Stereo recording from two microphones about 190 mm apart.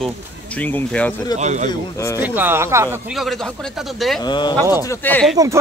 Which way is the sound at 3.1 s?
Centre (ahead or behind).